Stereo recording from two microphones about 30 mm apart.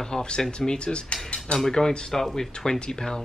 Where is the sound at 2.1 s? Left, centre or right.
Centre.